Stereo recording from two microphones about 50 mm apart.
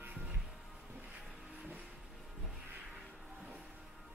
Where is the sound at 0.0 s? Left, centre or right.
Right.